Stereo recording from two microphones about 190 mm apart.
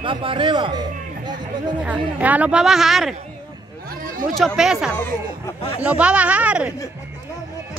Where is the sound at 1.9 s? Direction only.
10° right (ahead or behind).